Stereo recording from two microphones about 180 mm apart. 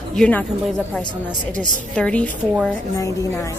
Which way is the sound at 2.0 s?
5° left (ahead or behind).